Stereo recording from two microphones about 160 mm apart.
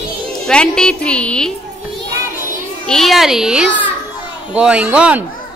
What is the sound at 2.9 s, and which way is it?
A woman's voice, centre (ahead or behind).